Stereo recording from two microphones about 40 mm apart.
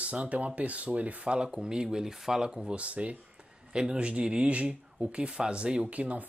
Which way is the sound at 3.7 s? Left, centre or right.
Right.